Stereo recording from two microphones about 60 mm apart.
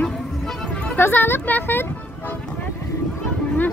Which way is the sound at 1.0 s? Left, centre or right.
Left.